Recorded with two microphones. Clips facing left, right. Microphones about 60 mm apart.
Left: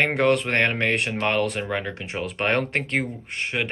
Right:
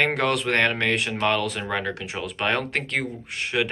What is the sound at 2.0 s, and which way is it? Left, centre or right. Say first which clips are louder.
Speech: left 1 dB; left.